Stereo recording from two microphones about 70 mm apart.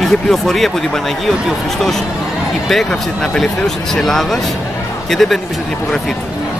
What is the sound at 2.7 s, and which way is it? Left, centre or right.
Speech, centre.